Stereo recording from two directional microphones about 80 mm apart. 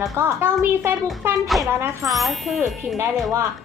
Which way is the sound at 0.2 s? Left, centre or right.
Right.